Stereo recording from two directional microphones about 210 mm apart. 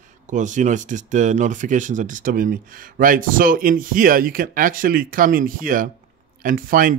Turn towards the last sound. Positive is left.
turn(degrees=-40)  # may be behind; listen again after turning